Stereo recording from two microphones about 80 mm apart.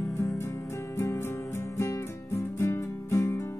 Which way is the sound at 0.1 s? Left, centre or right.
Left.